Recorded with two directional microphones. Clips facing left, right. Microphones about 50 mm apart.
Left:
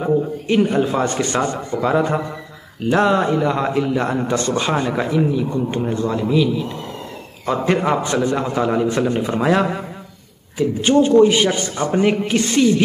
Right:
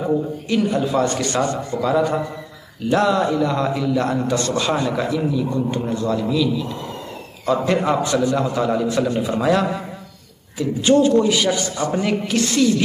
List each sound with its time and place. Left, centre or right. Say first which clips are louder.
0.0 s a man's voice: left 2 dB; left
10.8 s a man's voice: left 2 dB; left